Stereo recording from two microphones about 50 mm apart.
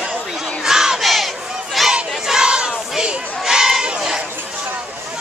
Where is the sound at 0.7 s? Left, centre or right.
Centre.